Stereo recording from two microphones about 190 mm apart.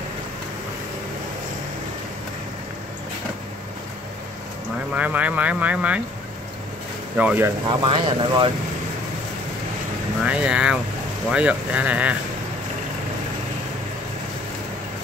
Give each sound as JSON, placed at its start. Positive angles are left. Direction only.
{"t": 4.9, "sound": "speech", "side_deg": -10}
{"t": 7.2, "sound": "speech", "side_deg": -10}
{"t": 7.8, "sound": "speech", "side_deg": -25}
{"t": 10.2, "sound": "speech", "side_deg": -5}